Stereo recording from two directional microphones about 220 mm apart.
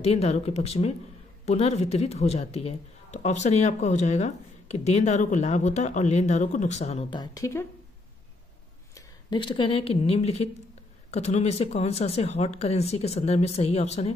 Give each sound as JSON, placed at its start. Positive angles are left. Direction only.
{"t": 0.0, "sound": "speech", "side_deg": 25}
{"t": 8.9, "sound": "speech", "side_deg": 20}